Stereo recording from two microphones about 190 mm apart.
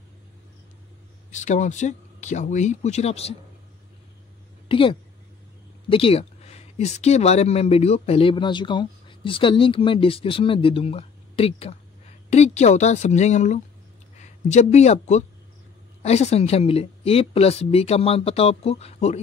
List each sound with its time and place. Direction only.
1.3 s speech: 40° left (ahead or behind)
4.6 s a woman's voice: 30° left (ahead or behind)